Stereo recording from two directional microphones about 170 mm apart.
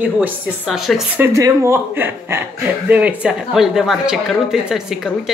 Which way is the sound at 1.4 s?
20° right (ahead or behind).